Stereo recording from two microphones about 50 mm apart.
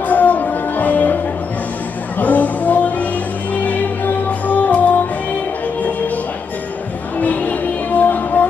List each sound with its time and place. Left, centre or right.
0.1 s music: left
2.1 s a sound: left
3.5 s music: left
7.2 s music: left